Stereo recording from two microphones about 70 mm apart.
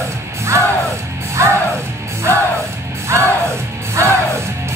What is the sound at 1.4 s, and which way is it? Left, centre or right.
Music, right.